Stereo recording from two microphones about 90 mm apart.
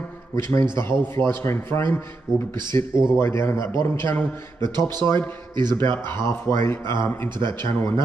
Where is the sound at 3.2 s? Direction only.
30° left (ahead or behind).